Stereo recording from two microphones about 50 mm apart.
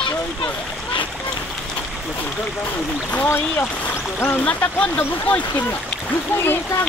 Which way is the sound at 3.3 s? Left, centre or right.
Left.